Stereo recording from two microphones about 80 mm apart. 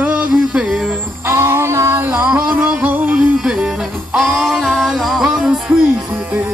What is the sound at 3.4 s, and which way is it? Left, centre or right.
Music, centre.